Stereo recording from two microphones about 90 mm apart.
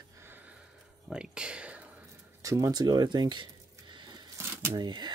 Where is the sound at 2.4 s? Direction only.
40° right (ahead or behind).